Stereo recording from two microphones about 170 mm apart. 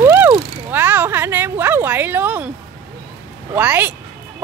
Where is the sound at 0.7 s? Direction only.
10° right (ahead or behind).